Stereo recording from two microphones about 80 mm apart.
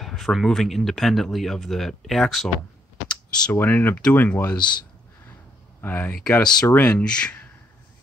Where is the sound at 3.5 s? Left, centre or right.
Left.